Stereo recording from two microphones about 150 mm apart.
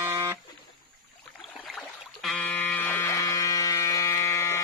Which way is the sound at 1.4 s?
Centre (ahead or behind).